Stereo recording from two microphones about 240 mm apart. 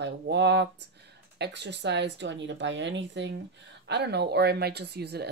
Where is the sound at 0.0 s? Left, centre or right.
Right.